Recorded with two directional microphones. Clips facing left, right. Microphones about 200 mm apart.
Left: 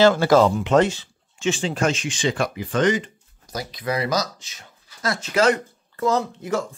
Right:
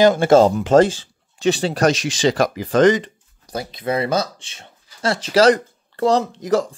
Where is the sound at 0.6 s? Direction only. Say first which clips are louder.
Right 4 dB; 35° right (ahead or behind).